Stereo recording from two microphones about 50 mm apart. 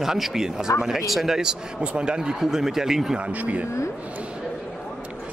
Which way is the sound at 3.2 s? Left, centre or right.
Right.